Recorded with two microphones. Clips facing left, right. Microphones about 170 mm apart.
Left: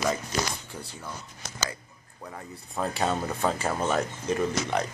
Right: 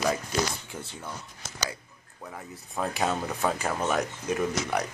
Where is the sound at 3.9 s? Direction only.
10° right (ahead or behind).